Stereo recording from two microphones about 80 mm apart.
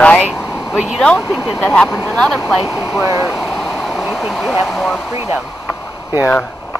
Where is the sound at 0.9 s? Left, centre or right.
Centre.